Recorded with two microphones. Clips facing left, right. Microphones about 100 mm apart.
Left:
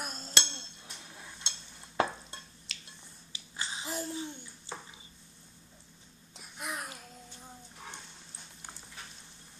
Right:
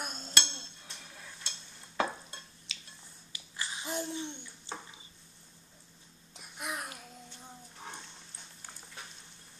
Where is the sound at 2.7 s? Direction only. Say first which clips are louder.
Even; centre (ahead or behind).